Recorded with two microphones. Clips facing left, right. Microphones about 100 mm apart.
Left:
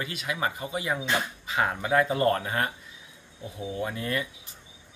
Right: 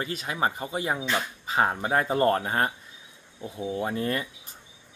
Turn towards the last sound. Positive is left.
turn(degrees=-40)  # may be behind; listen again after turning